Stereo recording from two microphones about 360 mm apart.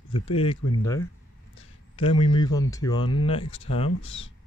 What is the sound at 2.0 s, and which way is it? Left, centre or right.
Speech, centre.